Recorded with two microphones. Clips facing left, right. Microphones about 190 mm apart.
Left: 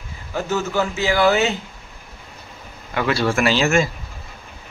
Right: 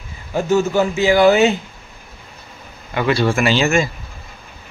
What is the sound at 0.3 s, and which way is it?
A man's voice, 15° right (ahead or behind).